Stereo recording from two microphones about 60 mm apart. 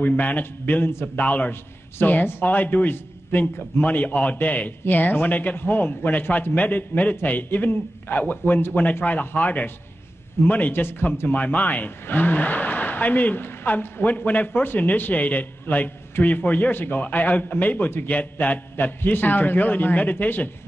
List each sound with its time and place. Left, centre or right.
0.0 s a man's voice: left